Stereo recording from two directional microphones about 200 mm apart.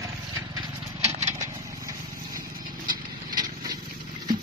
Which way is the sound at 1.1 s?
35° right (ahead or behind).